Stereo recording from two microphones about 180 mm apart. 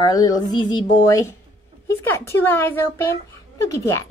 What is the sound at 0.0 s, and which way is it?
Speech, 20° left (ahead or behind).